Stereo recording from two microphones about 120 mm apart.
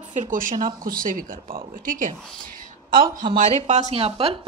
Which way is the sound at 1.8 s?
90° right.